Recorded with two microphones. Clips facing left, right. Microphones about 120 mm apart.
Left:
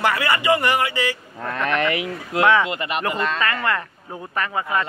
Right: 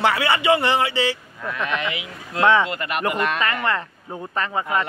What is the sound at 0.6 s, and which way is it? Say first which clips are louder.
A man's voice: right 1 dB; 25° right (ahead or behind).